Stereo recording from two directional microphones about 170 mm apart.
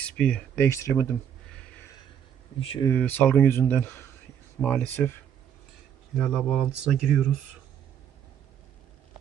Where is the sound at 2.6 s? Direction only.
35° left (ahead or behind).